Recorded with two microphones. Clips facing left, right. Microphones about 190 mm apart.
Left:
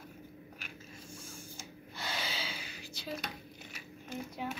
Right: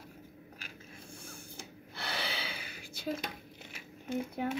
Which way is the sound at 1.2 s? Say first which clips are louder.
Even; 60° right (ahead or behind).